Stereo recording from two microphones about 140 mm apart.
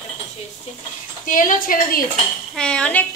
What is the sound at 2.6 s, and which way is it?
Speech, 5° left (ahead or behind).